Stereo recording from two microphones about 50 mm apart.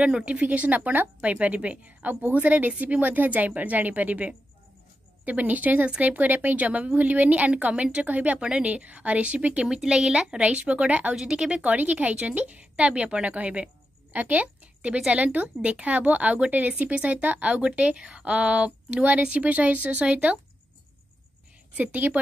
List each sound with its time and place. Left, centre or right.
0.0 s a woman's voice: right
11.1 s a woman's voice: centre
11.6 s a woman's voice: right
21.7 s a woman's voice: right